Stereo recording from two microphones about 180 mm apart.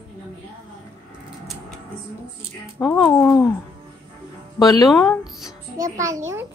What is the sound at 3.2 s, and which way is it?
Speech, 15° left (ahead or behind).